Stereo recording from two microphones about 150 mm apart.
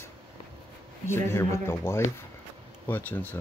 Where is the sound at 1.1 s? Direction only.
15° left (ahead or behind).